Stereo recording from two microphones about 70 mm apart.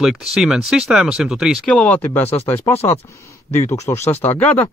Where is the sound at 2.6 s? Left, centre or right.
Left.